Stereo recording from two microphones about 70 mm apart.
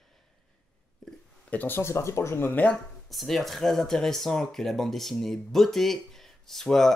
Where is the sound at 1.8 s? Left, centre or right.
Left.